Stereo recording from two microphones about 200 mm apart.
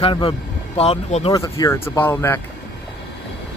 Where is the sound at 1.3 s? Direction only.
15° left (ahead or behind).